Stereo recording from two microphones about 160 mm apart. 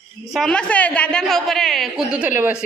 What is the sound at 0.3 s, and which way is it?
A woman's voice, 5° left (ahead or behind).